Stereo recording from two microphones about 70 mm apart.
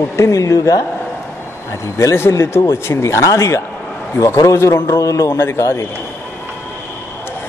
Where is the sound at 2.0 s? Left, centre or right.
Left.